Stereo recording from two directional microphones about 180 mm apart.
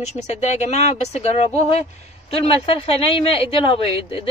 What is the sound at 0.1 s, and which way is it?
A man's voice, 40° left (ahead or behind).